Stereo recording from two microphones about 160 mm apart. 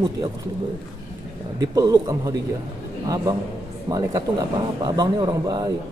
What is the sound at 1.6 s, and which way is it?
A man's voice, 25° right (ahead or behind).